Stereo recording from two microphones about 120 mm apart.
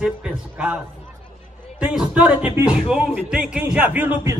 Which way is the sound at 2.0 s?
10° right (ahead or behind).